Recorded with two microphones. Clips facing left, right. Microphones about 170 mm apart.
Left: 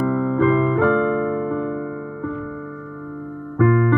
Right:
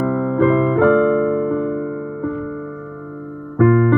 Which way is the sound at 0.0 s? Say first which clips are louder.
Right 2 dB; 45° right (ahead or behind).